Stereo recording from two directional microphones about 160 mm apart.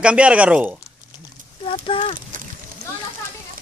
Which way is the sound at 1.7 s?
35° left (ahead or behind).